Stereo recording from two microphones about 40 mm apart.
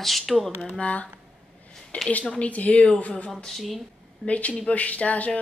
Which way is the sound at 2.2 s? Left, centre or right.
Left.